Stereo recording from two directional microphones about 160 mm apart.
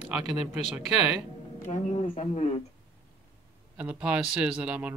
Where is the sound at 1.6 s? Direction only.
45° left (ahead or behind).